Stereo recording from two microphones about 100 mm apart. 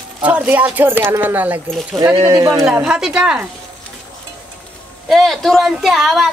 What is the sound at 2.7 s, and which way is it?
Speech, 10° right (ahead or behind).